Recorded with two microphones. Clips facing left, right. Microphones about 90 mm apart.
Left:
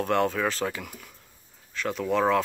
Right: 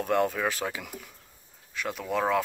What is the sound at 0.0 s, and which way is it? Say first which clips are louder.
Speech: left 1 dB; 5° right (ahead or behind).